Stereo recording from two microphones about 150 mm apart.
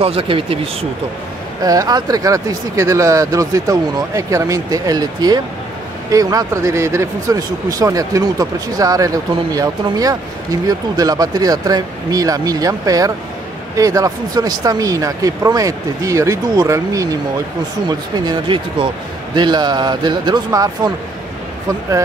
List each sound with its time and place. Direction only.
0.0 s speech: 40° right (ahead or behind)
1.6 s speech: 25° right (ahead or behind)